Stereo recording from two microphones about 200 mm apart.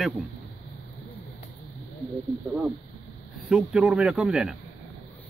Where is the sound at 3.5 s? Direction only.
5° right (ahead or behind).